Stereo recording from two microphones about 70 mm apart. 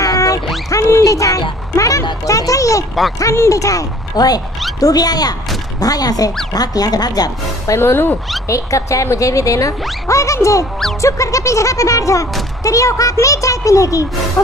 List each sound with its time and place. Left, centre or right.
0.0 s music: left
0.7 s a sound: left
2.2 s speech: left
7.7 s speech: left
8.5 s speech: left